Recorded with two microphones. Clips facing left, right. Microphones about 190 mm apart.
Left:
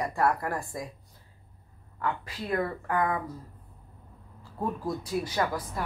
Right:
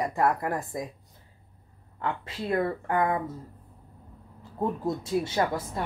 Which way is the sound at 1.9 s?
25° right (ahead or behind).